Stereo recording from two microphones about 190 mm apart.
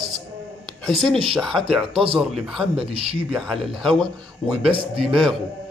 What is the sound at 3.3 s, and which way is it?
Speech, centre (ahead or behind).